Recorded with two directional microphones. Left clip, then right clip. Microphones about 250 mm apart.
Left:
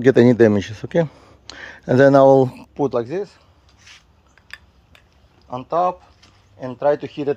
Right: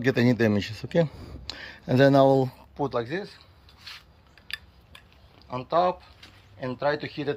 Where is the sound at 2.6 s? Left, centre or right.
Left.